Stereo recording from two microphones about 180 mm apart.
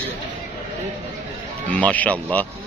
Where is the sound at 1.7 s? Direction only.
10° left (ahead or behind).